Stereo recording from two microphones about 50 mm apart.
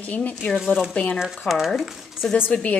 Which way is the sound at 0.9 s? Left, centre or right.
Left.